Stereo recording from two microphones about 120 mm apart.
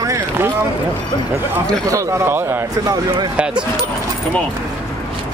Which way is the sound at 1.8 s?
25° right (ahead or behind).